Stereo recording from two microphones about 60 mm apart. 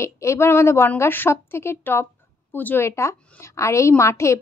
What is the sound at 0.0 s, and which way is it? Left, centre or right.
A woman's voice, left.